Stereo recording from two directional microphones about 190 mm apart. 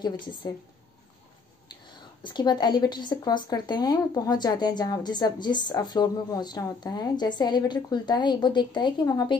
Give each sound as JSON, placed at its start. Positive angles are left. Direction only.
{"t": 2.0, "sound": "a woman's voice", "side_deg": 25}